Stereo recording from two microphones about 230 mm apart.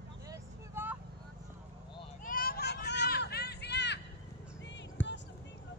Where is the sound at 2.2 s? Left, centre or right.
Left.